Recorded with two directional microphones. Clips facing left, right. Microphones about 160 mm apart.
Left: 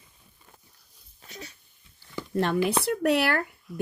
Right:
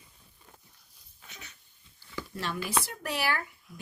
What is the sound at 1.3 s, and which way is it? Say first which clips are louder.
Wheeze: left 8 dB; 35° left (ahead or behind).